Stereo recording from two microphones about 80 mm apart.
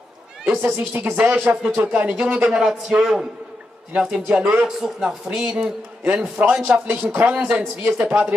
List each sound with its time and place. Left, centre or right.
0.5 s speech: right
1.1 s a man's voice: centre
2.5 s a man's voice: centre
4.4 s speech: right
4.6 s a man's voice: centre